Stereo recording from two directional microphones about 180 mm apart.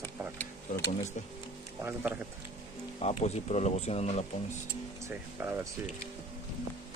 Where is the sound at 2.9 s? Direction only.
35° left (ahead or behind).